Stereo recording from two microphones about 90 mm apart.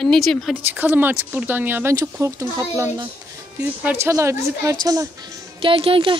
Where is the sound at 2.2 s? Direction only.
35° right (ahead or behind).